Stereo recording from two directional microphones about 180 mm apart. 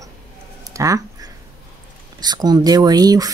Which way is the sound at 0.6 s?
20° right (ahead or behind).